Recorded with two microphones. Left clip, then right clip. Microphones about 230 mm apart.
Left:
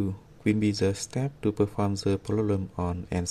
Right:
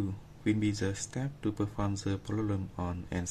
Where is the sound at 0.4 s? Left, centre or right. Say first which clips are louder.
Left 6 dB; left.